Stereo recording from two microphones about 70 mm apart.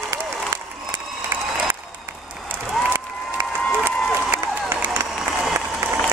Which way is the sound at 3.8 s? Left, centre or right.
Right.